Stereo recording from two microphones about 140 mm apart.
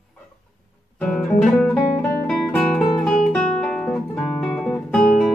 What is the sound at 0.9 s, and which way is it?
Guitar, 10° left (ahead or behind).